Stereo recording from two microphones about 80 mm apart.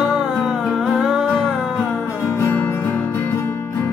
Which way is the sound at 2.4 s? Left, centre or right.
Left.